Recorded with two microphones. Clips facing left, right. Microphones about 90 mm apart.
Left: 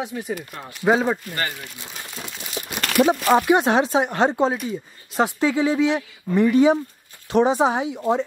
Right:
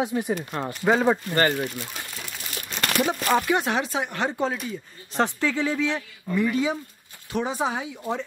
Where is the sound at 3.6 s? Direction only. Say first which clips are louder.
Left 7 dB; 25° left (ahead or behind).